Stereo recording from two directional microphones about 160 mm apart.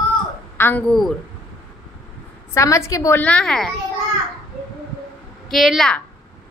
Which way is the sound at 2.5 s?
20° left (ahead or behind).